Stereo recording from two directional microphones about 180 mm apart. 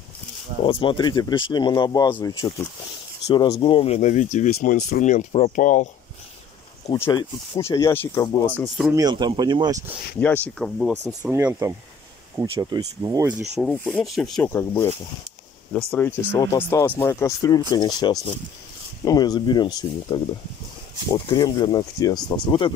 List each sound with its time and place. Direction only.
0.7 s speech: 30° left (ahead or behind)
4.5 s speech: 60° left (ahead or behind)
4.8 s speech: 45° left (ahead or behind)
6.9 s speech: 20° left (ahead or behind)
8.5 s speech: centre (ahead or behind)
8.9 s speech: 25° right (ahead or behind)
10.2 s speech: 10° left (ahead or behind)
11.2 s speech: 10° right (ahead or behind)
13.6 s speech: 5° left (ahead or behind)
14.5 s speech: 15° left (ahead or behind)